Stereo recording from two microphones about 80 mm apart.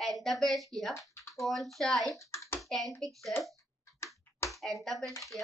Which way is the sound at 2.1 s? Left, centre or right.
Left.